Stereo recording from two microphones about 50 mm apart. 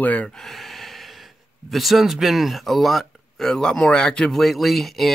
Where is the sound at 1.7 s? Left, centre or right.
Centre.